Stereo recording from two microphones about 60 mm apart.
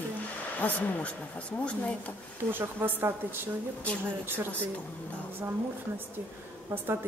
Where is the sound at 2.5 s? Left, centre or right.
Right.